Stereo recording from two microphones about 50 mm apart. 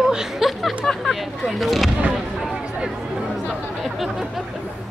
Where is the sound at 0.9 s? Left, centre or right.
Centre.